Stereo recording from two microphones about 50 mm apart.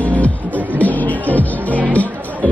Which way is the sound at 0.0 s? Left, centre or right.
Left.